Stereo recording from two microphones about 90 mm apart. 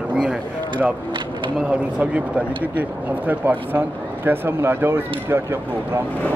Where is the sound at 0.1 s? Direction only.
10° right (ahead or behind).